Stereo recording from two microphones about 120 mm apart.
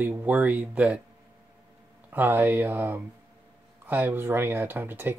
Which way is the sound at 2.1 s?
15° right (ahead or behind).